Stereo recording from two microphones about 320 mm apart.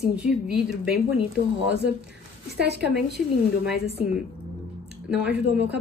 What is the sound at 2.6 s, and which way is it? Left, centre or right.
Speech, right.